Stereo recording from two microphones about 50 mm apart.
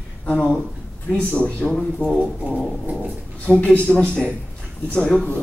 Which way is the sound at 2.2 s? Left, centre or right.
Centre.